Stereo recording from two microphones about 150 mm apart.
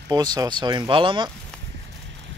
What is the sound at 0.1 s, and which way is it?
Speech, 25° right (ahead or behind).